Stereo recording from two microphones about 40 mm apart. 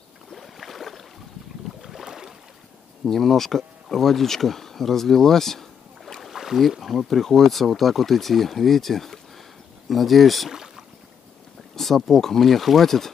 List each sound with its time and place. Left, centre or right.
0.3 s boat: centre
2.0 s boat: centre
3.1 s speech: centre
6.2 s boat: centre
6.8 s speech: centre
10.5 s rowboat: centre
11.7 s speech: centre